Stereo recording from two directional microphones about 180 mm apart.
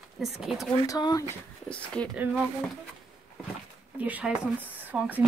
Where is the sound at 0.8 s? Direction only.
20° left (ahead or behind).